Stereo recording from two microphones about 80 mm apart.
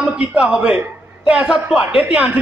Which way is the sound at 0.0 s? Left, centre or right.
Centre.